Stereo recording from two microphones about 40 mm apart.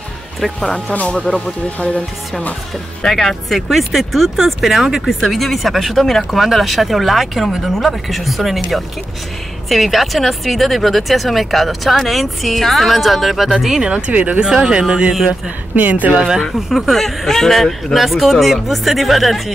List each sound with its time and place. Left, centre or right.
0.4 s speech: centre
1.1 s speech: centre
3.1 s speech: centre
9.7 s speech: centre
13.6 s speech: centre
14.1 s speech: right
14.4 s speech: centre
15.7 s speech: right
16.1 s speech: centre
16.5 s speech: centre
16.9 s speech: centre